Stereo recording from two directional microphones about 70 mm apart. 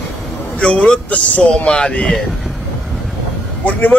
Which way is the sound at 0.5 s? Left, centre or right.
Centre.